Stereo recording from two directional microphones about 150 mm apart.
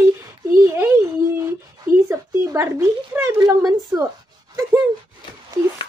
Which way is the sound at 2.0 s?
20° right (ahead or behind).